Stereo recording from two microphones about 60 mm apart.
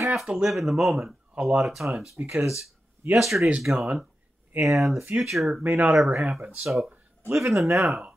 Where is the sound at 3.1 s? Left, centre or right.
Centre.